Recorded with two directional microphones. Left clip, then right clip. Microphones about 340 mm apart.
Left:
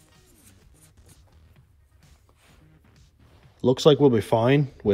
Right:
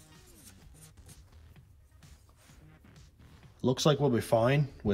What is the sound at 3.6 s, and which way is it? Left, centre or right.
Speech, centre.